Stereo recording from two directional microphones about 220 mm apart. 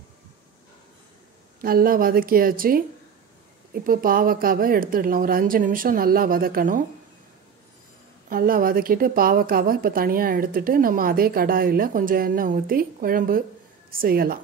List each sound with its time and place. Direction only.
1.6 s a woman's voice: 40° right (ahead or behind)
8.3 s a woman's voice: 40° right (ahead or behind)